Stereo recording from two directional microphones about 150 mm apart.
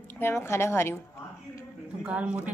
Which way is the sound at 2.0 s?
10° right (ahead or behind).